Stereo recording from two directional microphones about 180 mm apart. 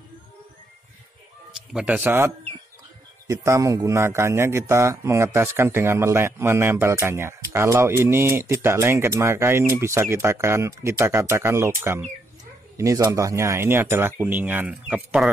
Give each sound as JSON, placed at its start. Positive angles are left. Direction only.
{"t": 1.5, "sound": "a man's voice", "side_deg": -5}